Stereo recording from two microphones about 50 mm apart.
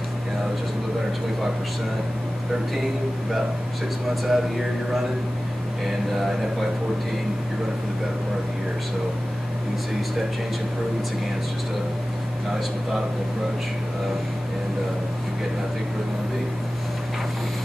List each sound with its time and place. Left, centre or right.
4.1 s speech: centre